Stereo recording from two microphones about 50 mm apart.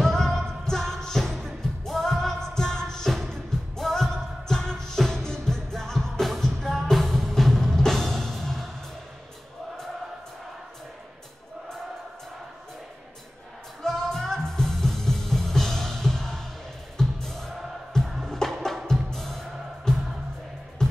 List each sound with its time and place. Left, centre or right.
0.0 s music: centre
13.8 s music: centre